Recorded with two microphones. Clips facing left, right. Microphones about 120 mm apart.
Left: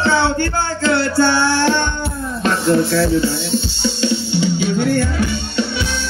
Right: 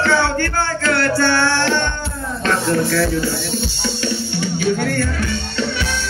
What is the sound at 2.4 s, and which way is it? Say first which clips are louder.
Music: left 3 dB; 20° left (ahead or behind).